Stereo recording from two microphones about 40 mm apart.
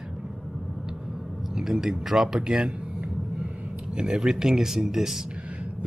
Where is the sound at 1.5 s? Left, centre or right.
Centre.